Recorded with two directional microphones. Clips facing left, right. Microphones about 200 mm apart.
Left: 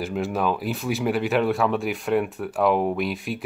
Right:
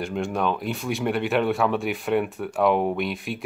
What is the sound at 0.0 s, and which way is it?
Speech, 5° left (ahead or behind).